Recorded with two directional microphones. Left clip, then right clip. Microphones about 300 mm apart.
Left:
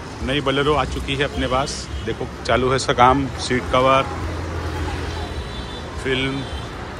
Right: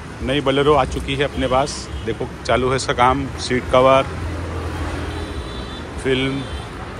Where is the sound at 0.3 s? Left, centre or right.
Centre.